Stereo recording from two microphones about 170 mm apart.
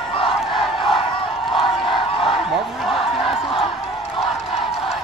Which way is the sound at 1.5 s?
30° left (ahead or behind).